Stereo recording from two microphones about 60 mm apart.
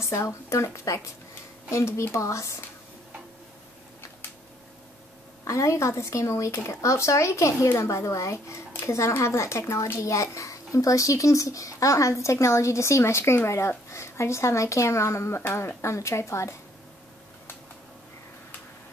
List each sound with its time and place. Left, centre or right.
0.0 s speech: left
5.5 s speech: left